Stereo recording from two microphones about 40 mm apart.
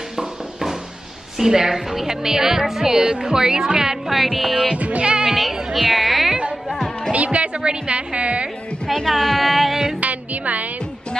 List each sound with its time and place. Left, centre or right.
1.4 s a woman's voice: centre
4.1 s speech: centre
4.7 s music: right
5.4 s speech: centre
7.1 s a woman's voice: right
8.8 s speech: centre
9.9 s music: right